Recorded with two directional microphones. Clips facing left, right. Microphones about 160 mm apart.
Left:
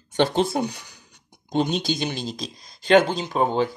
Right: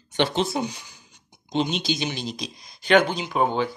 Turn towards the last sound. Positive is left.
turn(degrees=35)  # may be behind; listen again after turning